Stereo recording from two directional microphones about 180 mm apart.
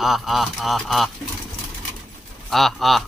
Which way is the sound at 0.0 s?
Centre (ahead or behind).